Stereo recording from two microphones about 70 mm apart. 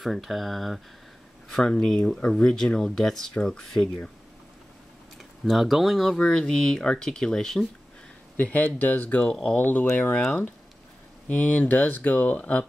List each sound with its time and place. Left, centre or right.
0.0 s speech: centre
5.1 s speech: centre
8.4 s speech: left
11.2 s speech: centre